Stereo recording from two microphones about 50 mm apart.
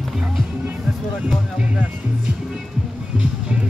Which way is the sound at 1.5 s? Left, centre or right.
Right.